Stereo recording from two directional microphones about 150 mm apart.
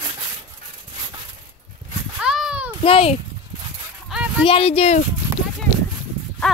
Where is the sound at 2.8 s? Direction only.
40° left (ahead or behind).